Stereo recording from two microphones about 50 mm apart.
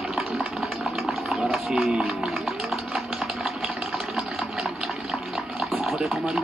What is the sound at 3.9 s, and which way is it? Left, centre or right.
Water, centre.